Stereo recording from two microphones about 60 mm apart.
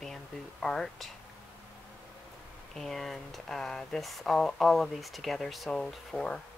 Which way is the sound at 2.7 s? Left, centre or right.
Centre.